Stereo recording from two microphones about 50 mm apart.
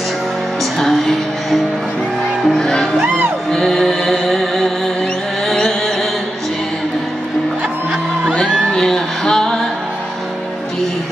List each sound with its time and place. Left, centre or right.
0.7 s music: centre
5.5 s mantra: centre
8.5 s a sound: centre
8.7 s music: centre